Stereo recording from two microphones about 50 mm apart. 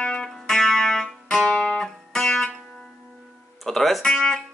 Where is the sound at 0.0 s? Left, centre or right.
Left.